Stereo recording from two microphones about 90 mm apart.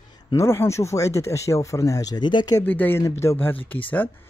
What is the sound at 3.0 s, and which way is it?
Speech, 30° left (ahead or behind).